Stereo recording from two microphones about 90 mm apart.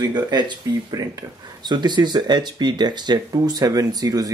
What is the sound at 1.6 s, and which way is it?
Speech, 55° right (ahead or behind).